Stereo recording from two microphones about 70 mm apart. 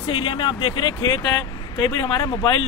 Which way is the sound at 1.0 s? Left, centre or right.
Left.